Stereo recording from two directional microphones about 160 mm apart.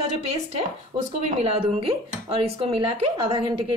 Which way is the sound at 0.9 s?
40° right (ahead or behind).